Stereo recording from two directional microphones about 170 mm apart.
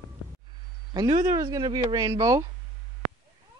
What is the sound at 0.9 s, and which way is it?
Speech, 25° right (ahead or behind).